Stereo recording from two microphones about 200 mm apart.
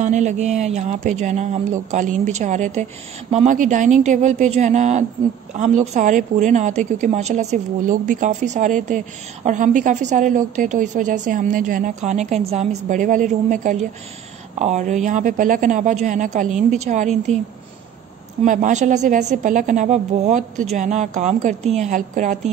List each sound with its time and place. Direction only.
0.0 s a woman's voice: 35° right (ahead or behind)
18.4 s a woman's voice: 40° right (ahead or behind)